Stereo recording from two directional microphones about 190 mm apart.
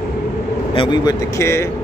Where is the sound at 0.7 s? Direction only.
25° left (ahead or behind).